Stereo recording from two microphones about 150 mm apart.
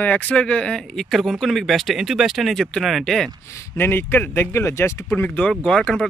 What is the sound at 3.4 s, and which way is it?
A man's voice, 20° left (ahead or behind).